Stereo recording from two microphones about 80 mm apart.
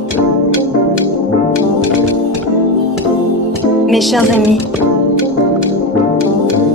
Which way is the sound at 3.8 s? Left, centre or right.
Centre.